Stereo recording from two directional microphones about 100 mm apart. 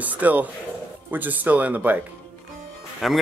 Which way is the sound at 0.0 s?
15° right (ahead or behind).